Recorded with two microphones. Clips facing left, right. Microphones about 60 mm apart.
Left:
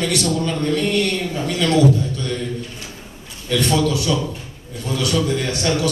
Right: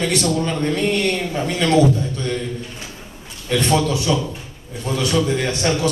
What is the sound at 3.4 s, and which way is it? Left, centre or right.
A man's voice, right.